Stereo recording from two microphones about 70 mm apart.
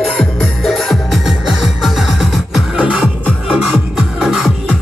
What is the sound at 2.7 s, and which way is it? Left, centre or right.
Music, centre.